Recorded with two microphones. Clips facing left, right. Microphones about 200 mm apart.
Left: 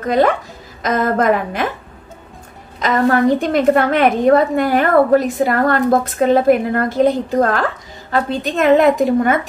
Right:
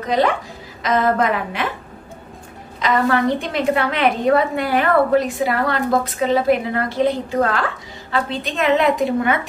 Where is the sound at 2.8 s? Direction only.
45° left (ahead or behind).